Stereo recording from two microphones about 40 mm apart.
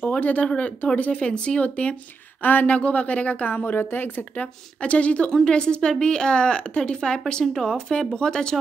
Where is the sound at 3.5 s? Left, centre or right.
Left.